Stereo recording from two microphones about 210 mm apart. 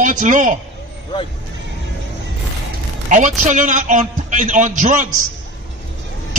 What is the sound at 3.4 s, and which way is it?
A man's voice, 35° right (ahead or behind).